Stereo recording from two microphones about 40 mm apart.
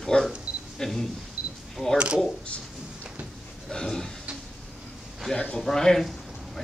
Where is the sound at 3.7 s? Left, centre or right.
Centre.